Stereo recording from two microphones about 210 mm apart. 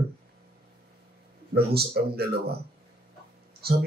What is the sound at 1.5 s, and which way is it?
Speech, 50° right (ahead or behind).